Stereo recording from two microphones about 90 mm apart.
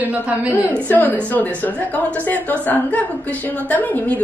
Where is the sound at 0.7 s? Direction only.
20° left (ahead or behind).